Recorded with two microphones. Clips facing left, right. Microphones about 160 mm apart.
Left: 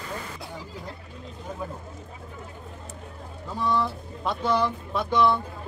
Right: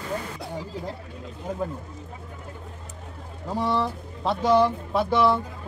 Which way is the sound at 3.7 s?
30° right (ahead or behind).